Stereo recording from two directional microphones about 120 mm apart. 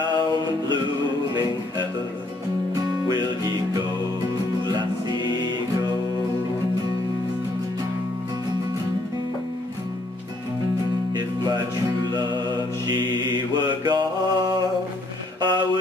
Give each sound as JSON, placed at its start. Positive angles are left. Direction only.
{"t": 3.1, "sound": "music", "side_deg": -35}
{"t": 11.4, "sound": "music", "side_deg": -35}
{"t": 13.8, "sound": "mantra", "side_deg": -40}
{"t": 15.4, "sound": "music", "side_deg": -40}